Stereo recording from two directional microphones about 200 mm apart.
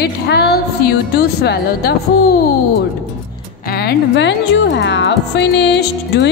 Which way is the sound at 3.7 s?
50° left (ahead or behind).